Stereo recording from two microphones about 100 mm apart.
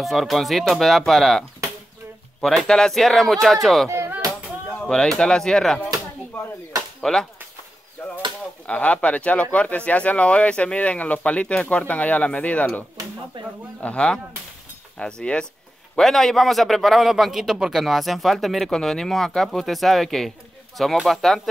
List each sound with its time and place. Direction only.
0.0 s a man's voice: centre (ahead or behind)
2.4 s a man's voice: 5° left (ahead or behind)
3.9 s a sound: 25° right (ahead or behind)
4.7 s speech: 5° left (ahead or behind)
7.0 s speech: 5° left (ahead or behind)
8.6 s speech: 15° left (ahead or behind)
13.4 s speech: 55° right (ahead or behind)
13.7 s a man's voice: 10° left (ahead or behind)